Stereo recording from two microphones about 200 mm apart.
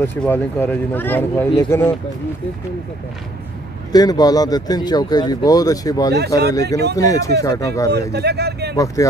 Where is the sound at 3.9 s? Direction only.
20° left (ahead or behind).